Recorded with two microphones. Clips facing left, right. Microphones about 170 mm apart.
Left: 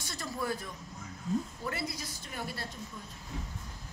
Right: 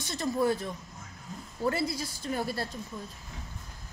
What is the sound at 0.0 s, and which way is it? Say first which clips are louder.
A woman's voice: right 9 dB; 20° right (ahead or behind).